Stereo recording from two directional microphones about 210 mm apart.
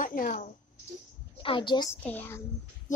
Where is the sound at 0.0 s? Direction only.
40° left (ahead or behind).